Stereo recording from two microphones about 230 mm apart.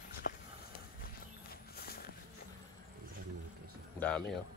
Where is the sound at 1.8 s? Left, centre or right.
Left.